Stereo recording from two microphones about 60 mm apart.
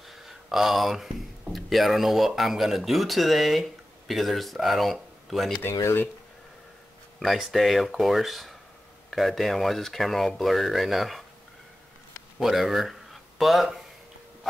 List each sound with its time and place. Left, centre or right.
0.0 s speech: centre
5.7 s speech: left
7.2 s speech: centre
12.4 s speech: centre